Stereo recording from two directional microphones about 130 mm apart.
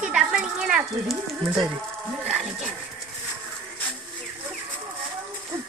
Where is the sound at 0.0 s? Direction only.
5° right (ahead or behind).